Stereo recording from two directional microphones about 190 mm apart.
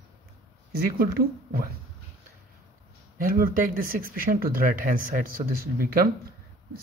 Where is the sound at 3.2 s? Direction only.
50° right (ahead or behind).